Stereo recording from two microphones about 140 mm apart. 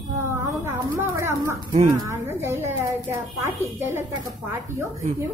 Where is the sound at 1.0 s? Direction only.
20° right (ahead or behind).